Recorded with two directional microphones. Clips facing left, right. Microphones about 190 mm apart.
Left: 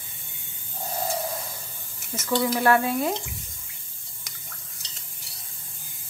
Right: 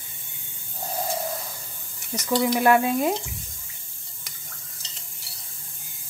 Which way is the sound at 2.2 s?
15° right (ahead or behind).